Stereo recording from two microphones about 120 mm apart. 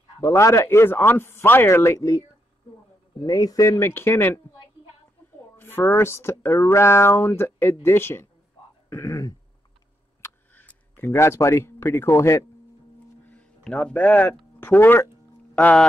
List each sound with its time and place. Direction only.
0.3 s speech: 25° left (ahead or behind)
3.2 s speech: 30° left (ahead or behind)
5.6 s speech: 20° left (ahead or behind)
8.8 s throat clearing: 25° left (ahead or behind)
10.2 s a sound: 15° left (ahead or behind)
13.2 s a sound: 10° left (ahead or behind)
14.6 s speech: 20° left (ahead or behind)
15.5 s speech: 5° left (ahead or behind)